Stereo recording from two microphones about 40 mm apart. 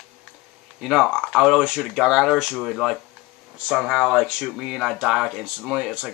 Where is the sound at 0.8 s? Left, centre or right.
Centre.